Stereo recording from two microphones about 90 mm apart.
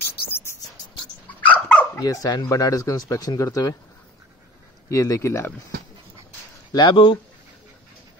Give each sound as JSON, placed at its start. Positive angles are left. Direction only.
{"t": 0.0, "sound": "a sound", "side_deg": 25}
{"t": 1.5, "sound": "dog", "side_deg": 15}
{"t": 2.0, "sound": "speech", "side_deg": 40}
{"t": 4.8, "sound": "speech", "side_deg": 35}
{"t": 6.7, "sound": "speech", "side_deg": 55}